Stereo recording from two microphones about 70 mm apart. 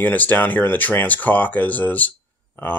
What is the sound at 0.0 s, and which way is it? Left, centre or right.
Speech, left.